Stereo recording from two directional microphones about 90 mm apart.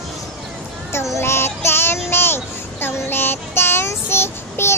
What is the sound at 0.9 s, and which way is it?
Child singing, 30° left (ahead or behind).